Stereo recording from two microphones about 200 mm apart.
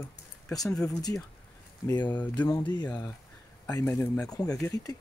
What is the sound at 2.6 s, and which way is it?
Speech, 20° left (ahead or behind).